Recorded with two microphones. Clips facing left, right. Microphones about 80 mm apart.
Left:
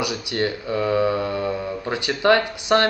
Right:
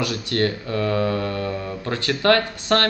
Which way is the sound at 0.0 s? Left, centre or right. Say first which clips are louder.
Right 1 dB; centre.